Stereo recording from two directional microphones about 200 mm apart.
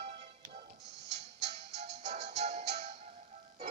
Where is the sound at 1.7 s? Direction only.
35° right (ahead or behind).